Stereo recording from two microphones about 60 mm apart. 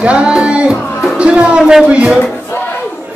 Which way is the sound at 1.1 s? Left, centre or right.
Centre.